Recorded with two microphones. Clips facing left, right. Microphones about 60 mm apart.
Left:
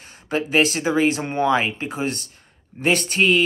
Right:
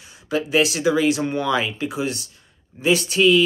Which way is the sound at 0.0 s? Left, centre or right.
Left.